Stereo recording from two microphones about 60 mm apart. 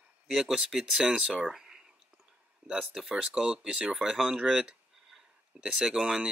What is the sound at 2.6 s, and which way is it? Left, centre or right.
Speech, centre.